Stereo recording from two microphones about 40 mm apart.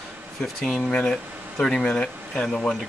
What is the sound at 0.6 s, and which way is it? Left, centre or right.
Speech, centre.